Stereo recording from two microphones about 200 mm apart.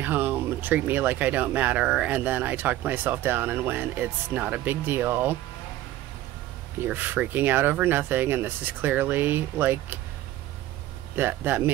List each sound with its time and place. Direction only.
0.0 s speech: 10° right (ahead or behind)
6.8 s speech: 10° right (ahead or behind)
11.1 s speech: 10° right (ahead or behind)